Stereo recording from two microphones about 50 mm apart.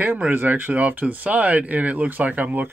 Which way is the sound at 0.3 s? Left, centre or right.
Right.